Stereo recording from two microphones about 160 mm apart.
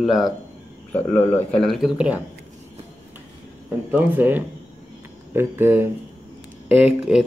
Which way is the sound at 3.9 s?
10° right (ahead or behind).